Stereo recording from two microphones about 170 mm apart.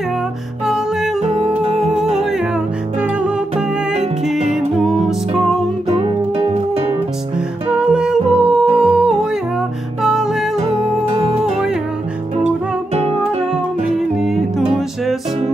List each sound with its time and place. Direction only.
0.7 s music: 5° right (ahead or behind)
1.5 s music: 40° right (ahead or behind)
3.0 s music: 5° right (ahead or behind)
4.7 s music: centre (ahead or behind)
5.9 s music: 35° right (ahead or behind)
7.9 s music: 5° right (ahead or behind)
12.9 s music: 40° right (ahead or behind)
13.9 s music: centre (ahead or behind)